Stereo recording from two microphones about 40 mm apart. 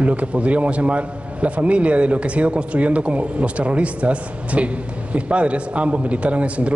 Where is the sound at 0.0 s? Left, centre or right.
Right.